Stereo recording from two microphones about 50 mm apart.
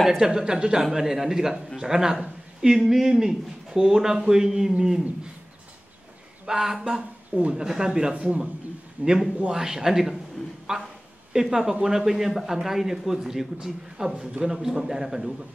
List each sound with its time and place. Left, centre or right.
0.2 s speech: centre
6.4 s speech: centre